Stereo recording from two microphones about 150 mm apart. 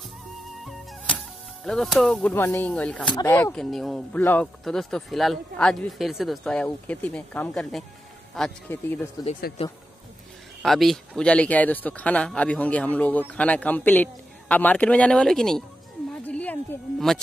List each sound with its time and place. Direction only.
0.7 s music: 5° left (ahead or behind)
2.3 s speech: 15° left (ahead or behind)
3.5 s speech: centre (ahead or behind)
8.4 s speech: 10° left (ahead or behind)
9.6 s speech: 40° left (ahead or behind)
10.6 s speech: centre (ahead or behind)
16.3 s a sound: 10° left (ahead or behind)